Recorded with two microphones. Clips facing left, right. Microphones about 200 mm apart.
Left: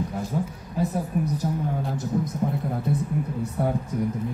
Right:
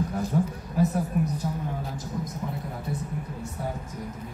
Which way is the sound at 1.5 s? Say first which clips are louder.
Left 4 dB; 40° left (ahead or behind).